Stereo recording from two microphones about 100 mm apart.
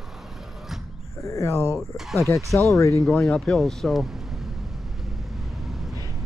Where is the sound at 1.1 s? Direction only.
30° left (ahead or behind).